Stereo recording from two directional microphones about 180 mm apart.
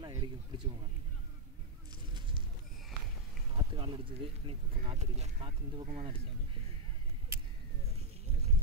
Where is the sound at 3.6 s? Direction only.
30° right (ahead or behind).